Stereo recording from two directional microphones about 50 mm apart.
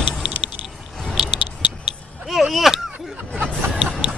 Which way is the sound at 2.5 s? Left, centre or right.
Centre.